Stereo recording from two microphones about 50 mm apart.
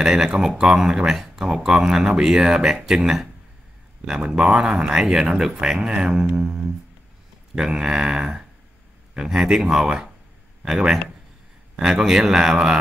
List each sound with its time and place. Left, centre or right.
0.0 s speech: centre